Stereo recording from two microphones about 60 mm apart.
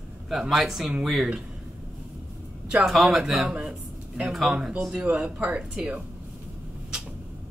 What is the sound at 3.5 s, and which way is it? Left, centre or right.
Speech, centre.